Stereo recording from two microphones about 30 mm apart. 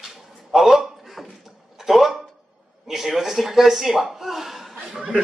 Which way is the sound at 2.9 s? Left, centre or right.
Centre.